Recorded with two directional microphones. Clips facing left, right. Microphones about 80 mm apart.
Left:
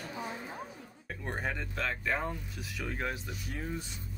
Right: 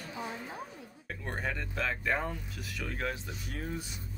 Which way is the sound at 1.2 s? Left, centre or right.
Centre.